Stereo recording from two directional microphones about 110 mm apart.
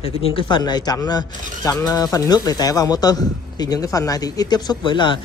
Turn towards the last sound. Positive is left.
turn(degrees=45)  # may be behind; listen again after turning